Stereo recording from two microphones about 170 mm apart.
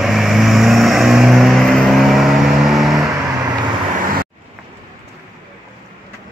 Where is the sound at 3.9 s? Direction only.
55° right (ahead or behind).